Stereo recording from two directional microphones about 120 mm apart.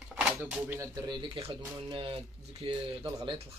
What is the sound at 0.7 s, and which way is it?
Speech, 35° right (ahead or behind).